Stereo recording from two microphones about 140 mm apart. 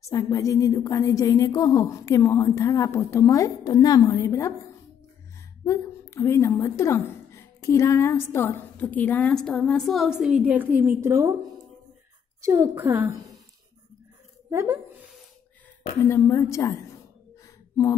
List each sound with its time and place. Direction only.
0.0 s a woman's voice: 25° left (ahead or behind)
5.7 s a woman's voice: 20° left (ahead or behind); by 11.3 s 20° right (ahead or behind)
12.4 s a woman's voice: 20° right (ahead or behind)
14.5 s speech: 20° right (ahead or behind)
16.1 s a woman's voice: 20° left (ahead or behind)